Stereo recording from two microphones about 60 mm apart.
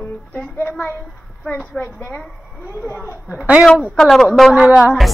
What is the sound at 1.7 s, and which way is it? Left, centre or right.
Speech, left.